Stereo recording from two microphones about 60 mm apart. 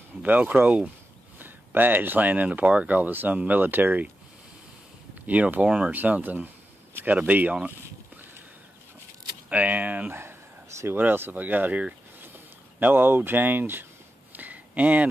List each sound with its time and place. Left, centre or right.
0.2 s speech: right
5.2 s speech: right
5.9 s a sound: right
7.1 s speech: right
9.5 s speech: right
14.3 s a sound: right